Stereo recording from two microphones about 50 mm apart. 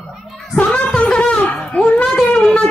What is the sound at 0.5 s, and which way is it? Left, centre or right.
Music, left.